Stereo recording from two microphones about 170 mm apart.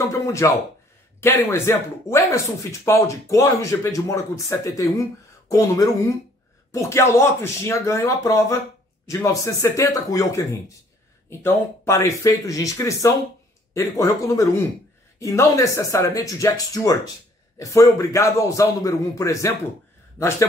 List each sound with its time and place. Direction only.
0.0 s a man's voice: 15° left (ahead or behind)